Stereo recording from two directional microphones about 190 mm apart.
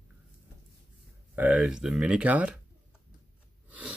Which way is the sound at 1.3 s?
10° right (ahead or behind).